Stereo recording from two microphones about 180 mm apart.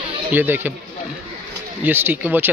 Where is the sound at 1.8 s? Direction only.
10° right (ahead or behind).